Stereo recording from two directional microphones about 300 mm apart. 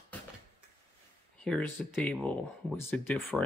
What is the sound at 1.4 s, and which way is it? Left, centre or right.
Speech, centre.